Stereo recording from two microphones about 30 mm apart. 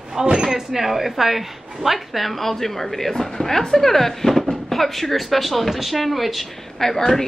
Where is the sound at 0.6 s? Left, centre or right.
Centre.